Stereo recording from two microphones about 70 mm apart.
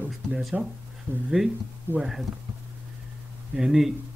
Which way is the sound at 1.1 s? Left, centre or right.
Right.